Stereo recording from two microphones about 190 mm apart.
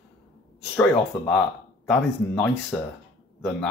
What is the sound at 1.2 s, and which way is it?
Speech, 5° left (ahead or behind).